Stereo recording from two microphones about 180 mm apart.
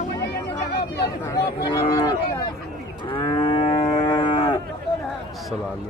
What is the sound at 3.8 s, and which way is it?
Cattle, 25° left (ahead or behind).